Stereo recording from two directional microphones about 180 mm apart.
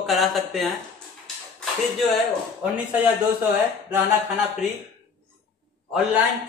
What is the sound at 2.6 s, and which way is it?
Speech, 5° right (ahead or behind).